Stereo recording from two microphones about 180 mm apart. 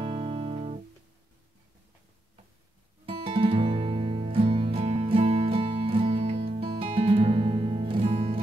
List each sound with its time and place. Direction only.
0.0 s music: 35° right (ahead or behind)
3.1 s music: 30° right (ahead or behind)